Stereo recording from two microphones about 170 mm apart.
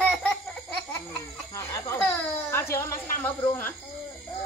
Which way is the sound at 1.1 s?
15° left (ahead or behind).